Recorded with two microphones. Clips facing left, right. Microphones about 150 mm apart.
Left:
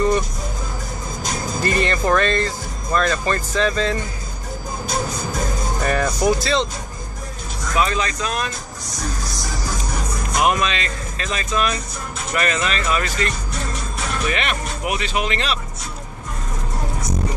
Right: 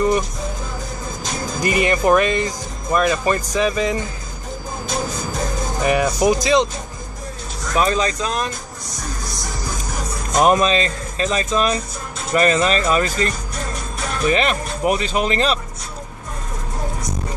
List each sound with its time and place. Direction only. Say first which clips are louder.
1.6 s speech: right 3 dB; 10° right (ahead or behind)
5.8 s speech: right 4 dB; 10° right (ahead or behind)
7.7 s speech: right 3 dB; 35° right (ahead or behind)
10.3 s speech: right 5 dB; 35° right (ahead or behind)
14.3 s speech: right 5 dB; 35° right (ahead or behind)